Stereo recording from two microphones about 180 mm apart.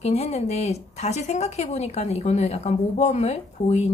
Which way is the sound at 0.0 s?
35° left (ahead or behind).